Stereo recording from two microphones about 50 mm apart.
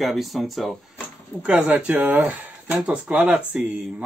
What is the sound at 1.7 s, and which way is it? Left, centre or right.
Speech, right.